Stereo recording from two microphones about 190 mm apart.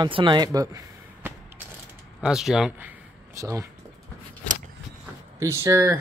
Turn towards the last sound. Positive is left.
turn(degrees=-15)  # may be behind; listen again after turning